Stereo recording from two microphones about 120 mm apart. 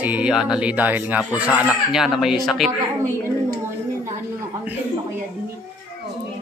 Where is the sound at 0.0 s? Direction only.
10° right (ahead or behind).